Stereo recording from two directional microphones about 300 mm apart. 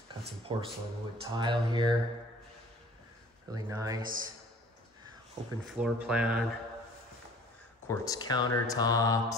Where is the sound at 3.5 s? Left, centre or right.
Centre.